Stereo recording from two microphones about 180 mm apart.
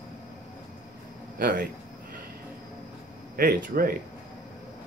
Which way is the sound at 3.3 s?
55° right (ahead or behind).